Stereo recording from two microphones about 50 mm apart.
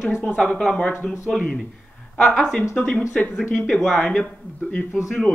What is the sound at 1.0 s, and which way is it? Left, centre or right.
Speech, centre.